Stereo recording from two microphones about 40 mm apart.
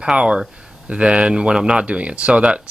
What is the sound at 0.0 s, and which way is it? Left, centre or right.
Speech, right.